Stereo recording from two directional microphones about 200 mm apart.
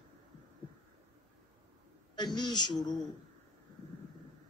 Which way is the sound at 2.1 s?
20° left (ahead or behind).